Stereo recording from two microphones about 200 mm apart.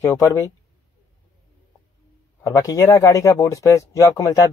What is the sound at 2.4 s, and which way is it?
Speech, 15° left (ahead or behind).